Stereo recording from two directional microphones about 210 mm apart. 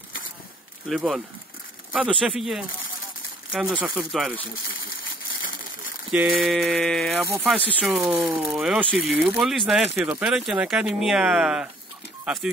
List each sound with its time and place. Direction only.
0.8 s speech: centre (ahead or behind)
6.1 s speech: centre (ahead or behind)